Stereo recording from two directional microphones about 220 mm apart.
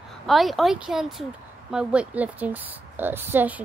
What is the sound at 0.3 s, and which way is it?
A woman's voice, centre (ahead or behind).